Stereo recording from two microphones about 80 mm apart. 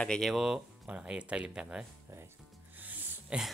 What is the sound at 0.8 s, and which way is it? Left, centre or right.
Speech, centre.